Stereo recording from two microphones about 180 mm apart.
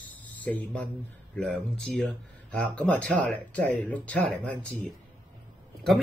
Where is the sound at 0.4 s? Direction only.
10° left (ahead or behind).